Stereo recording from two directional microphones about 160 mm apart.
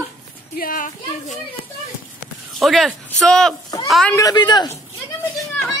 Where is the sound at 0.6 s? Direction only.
60° left (ahead or behind).